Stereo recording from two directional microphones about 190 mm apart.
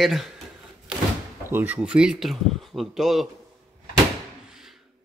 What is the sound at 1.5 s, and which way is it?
Speech, 10° right (ahead or behind).